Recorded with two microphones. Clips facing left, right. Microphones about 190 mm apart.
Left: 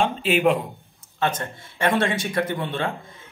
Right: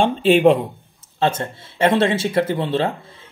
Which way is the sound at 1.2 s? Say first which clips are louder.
Right 5 dB; 25° right (ahead or behind).